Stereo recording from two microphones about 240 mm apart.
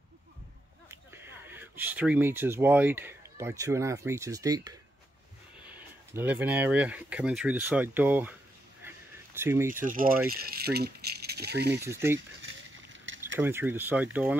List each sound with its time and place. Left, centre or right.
0.8 s speech: centre
8.8 s a sound: centre
9.8 s speech: right
11.7 s speech: centre
12.4 s vehicle: right
13.4 s speech: centre